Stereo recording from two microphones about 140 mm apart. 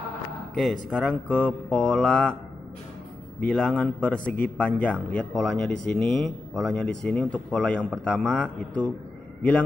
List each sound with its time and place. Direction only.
0.6 s speech: centre (ahead or behind)
3.4 s speech: 5° left (ahead or behind)